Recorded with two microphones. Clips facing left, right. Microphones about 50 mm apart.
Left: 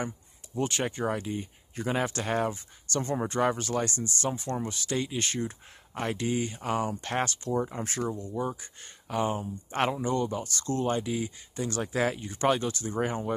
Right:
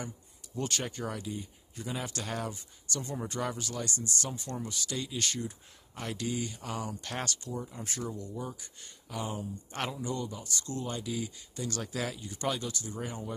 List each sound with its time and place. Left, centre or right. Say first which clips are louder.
0.6 s speech: left 5 dB; left
7.4 s speech: left 9 dB; left
8.1 s speech: left 7 dB; left